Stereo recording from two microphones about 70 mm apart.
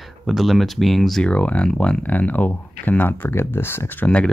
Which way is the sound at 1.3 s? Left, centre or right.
Centre.